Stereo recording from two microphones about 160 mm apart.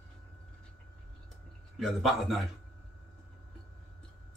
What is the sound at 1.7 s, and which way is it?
Speech, centre (ahead or behind).